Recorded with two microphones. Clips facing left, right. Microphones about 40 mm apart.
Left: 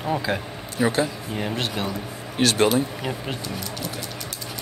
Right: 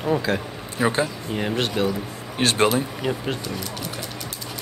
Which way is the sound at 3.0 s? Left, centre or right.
Centre.